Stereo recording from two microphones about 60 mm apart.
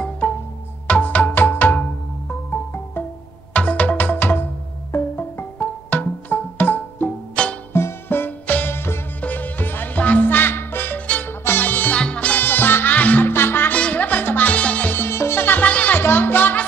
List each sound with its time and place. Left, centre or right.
0.8 s music: left
7.4 s music: centre
7.7 s music: left
9.2 s music: left
12.4 s music: left
13.3 s music: left
13.7 s music: left
15.0 s music: left
16.0 s music: left